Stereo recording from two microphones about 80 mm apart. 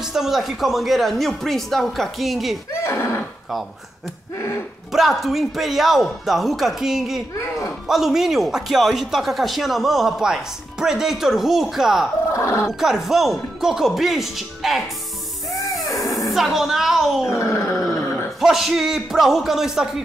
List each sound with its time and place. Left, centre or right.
0.0 s speech: centre
2.7 s speech: left
4.9 s speech: centre
7.3 s speech: left
7.8 s speech: centre
12.4 s speech: left
12.7 s speech: centre
15.8 s a sound: left
16.3 s speech: centre
17.3 s grunt: left
18.4 s speech: centre